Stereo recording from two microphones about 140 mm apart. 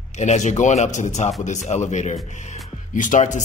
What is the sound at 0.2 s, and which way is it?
Speech, 55° left (ahead or behind).